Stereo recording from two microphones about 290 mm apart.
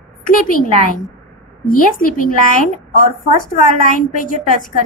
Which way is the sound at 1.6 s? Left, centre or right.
Left.